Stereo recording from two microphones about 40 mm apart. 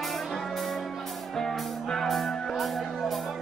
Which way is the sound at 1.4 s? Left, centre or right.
Centre.